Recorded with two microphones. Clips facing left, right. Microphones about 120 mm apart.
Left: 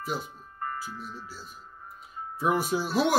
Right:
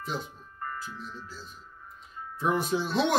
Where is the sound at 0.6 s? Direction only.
45° left (ahead or behind).